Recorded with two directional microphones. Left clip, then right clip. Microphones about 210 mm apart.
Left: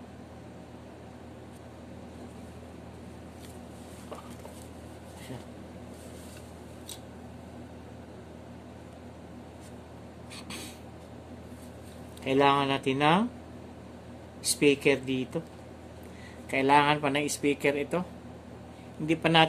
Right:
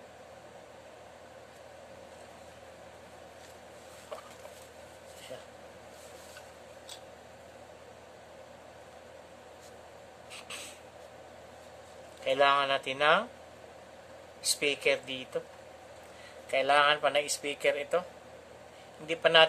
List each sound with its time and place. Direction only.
10.3 s a sound: 20° left (ahead or behind)
12.3 s speech: 20° left (ahead or behind)
14.4 s a man's voice: 20° left (ahead or behind)
16.4 s a man's voice: 20° left (ahead or behind)
19.0 s speech: 15° left (ahead or behind)